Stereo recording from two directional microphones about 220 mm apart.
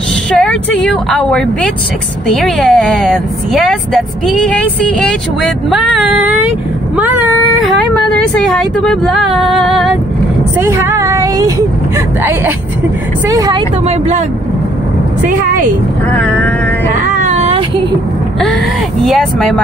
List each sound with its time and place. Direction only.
0.4 s a woman's voice: 5° left (ahead or behind)
10.6 s speech: 10° right (ahead or behind); by 14.2 s 30° right (ahead or behind)
15.2 s a woman's voice: 40° right (ahead or behind)
16.1 s speech: 5° left (ahead or behind)
17.0 s a sound: 35° right (ahead or behind)
19.0 s a woman's voice: centre (ahead or behind)